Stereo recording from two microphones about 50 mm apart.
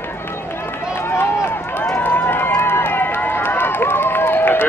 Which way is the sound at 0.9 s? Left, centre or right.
Left.